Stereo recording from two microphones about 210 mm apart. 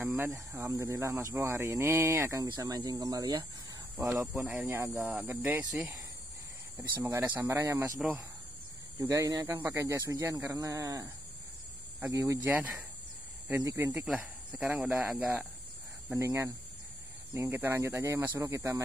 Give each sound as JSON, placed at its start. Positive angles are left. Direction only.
{"t": 0.0, "sound": "speech", "side_deg": -10}
{"t": 9.0, "sound": "speech", "side_deg": -15}
{"t": 14.0, "sound": "speech", "side_deg": -5}